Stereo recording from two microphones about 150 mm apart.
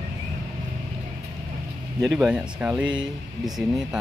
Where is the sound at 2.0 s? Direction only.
5° right (ahead or behind).